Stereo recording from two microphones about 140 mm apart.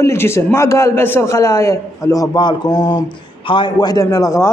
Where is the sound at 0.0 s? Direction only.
20° left (ahead or behind).